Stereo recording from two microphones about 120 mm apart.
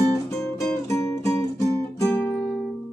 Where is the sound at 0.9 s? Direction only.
20° left (ahead or behind).